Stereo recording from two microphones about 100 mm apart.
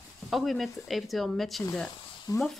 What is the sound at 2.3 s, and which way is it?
Speech, 35° left (ahead or behind).